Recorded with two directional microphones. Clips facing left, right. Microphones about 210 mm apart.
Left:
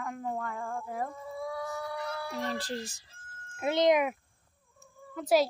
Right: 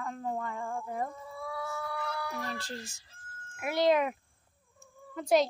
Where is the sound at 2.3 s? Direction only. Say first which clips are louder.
Left 4 dB; 30° left (ahead or behind).